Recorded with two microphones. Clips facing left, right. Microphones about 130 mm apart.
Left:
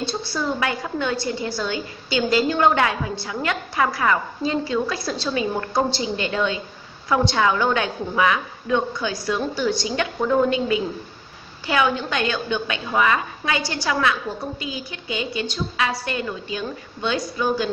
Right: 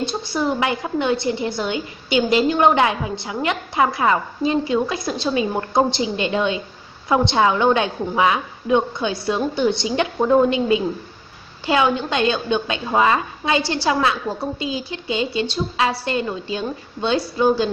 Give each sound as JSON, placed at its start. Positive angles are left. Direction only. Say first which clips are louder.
{"t": 0.0, "sound": "a woman's voice", "louder": "right 3 dB", "side_deg": -20}